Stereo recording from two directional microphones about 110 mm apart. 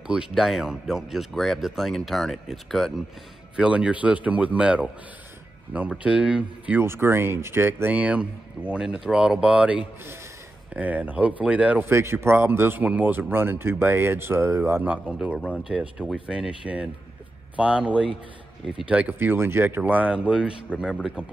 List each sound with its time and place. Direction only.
0.0 s speech: 5° right (ahead or behind)